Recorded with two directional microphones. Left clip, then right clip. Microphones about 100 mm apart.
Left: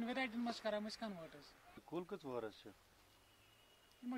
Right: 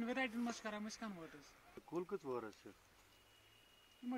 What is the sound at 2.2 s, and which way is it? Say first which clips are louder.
Speech: even; 30° left (ahead or behind).